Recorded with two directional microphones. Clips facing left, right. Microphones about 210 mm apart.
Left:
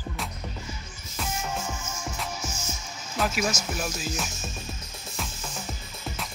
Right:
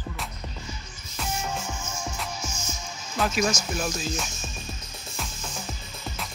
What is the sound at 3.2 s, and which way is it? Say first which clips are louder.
Speech: right 2 dB; 5° left (ahead or behind).